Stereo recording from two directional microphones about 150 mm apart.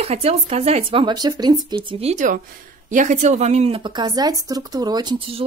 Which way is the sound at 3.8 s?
30° right (ahead or behind).